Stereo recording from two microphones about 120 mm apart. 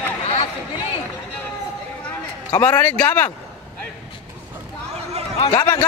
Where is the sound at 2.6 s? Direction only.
15° left (ahead or behind).